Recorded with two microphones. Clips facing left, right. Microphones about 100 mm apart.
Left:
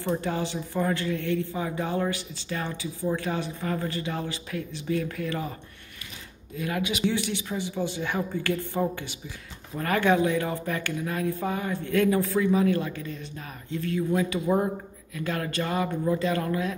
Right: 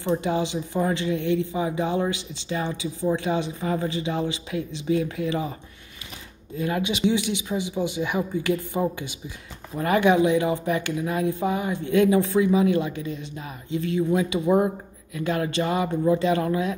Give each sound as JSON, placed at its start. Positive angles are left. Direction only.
{"t": 0.0, "sound": "speech", "side_deg": -20}
{"t": 6.5, "sound": "speech", "side_deg": -30}